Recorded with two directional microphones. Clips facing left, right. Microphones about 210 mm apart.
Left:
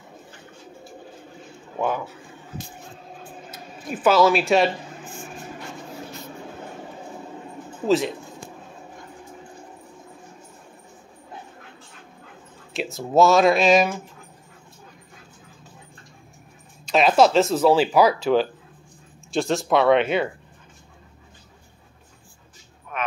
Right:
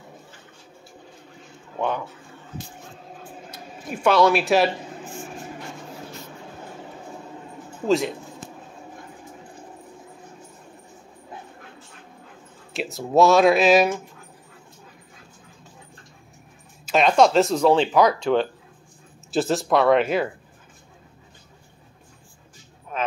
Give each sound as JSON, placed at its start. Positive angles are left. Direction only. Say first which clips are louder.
{"t": 1.8, "sound": "speech", "louder": "left 1 dB", "side_deg": 5}
{"t": 3.5, "sound": "speech", "louder": "left 1 dB", "side_deg": 5}
{"t": 7.8, "sound": "speech", "louder": "left 1 dB", "side_deg": 0}
{"t": 12.7, "sound": "speech", "louder": "even", "side_deg": 0}
{"t": 16.8, "sound": "speech", "louder": "even", "side_deg": 0}
{"t": 22.9, "sound": "a sound", "louder": "right 2 dB", "side_deg": -30}